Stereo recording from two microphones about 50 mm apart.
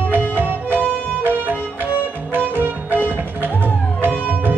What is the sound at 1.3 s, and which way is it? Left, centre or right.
Music, right.